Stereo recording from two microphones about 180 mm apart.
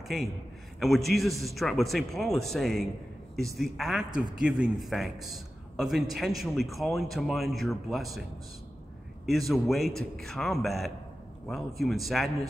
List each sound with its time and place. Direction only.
0.7 s speech: centre (ahead or behind)
9.5 s speech: centre (ahead or behind)